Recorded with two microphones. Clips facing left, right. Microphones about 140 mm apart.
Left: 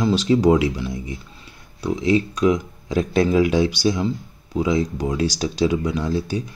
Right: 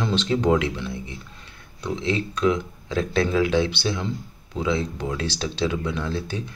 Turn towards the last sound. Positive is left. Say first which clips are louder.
# left 5 dB
turn(degrees=10)  # may be behind; listen again after turning